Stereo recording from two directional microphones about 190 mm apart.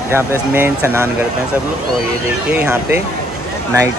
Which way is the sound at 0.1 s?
10° right (ahead or behind).